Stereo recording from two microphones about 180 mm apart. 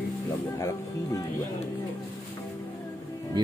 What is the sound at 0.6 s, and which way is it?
Music, 20° left (ahead or behind).